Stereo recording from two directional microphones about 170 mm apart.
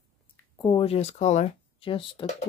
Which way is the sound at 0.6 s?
30° left (ahead or behind).